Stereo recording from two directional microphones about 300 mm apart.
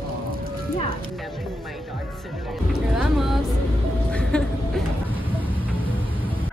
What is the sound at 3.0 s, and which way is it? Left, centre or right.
Music, centre.